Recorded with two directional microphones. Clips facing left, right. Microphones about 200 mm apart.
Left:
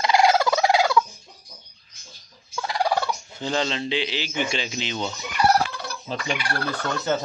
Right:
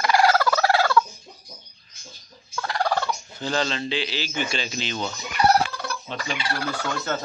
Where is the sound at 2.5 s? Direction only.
15° left (ahead or behind).